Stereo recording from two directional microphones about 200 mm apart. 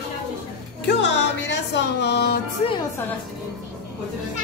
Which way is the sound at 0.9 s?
60° left (ahead or behind).